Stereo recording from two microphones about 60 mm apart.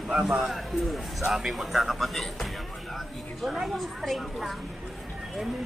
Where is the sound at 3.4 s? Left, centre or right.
Centre.